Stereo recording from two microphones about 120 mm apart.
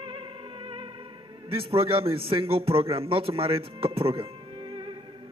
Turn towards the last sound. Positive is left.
turn(degrees=-40)  # may be behind; listen again after turning